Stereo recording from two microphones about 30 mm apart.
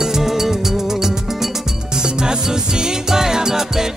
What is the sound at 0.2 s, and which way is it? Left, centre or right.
Music, centre.